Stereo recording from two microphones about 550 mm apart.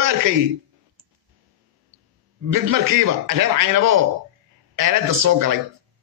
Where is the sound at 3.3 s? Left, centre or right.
Right.